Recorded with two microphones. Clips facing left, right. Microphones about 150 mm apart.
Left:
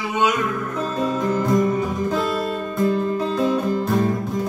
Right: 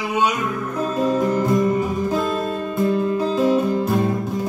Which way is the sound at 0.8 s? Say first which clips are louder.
Right 4 dB; 5° right (ahead or behind).